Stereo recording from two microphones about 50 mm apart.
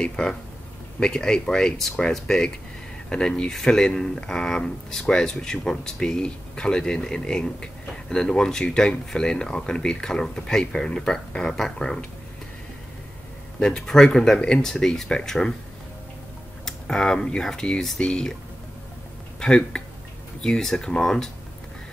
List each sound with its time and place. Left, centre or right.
0.0 s speech: centre
13.6 s speech: centre
16.6 s speech: centre
19.4 s speech: centre